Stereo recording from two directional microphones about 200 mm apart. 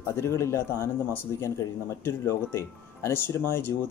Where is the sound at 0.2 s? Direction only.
15° left (ahead or behind).